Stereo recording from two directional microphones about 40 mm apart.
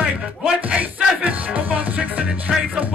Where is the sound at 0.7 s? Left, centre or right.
Right.